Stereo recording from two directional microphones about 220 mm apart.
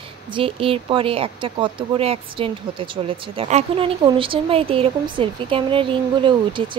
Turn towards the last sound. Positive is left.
turn(degrees=-20)  # may be behind; listen again after turning